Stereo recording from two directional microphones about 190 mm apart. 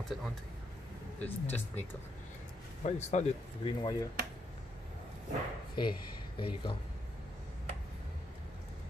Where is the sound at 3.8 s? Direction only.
20° left (ahead or behind).